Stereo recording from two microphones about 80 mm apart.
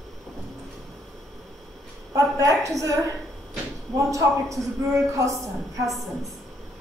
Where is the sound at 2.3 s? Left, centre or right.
Right.